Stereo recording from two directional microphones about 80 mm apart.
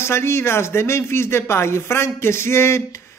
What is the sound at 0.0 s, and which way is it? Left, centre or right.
Speech, left.